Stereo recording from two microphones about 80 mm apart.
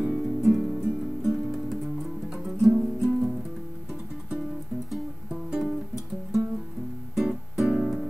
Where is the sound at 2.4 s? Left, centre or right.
Centre.